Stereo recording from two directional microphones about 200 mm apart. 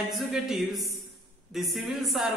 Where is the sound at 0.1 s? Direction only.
Centre (ahead or behind).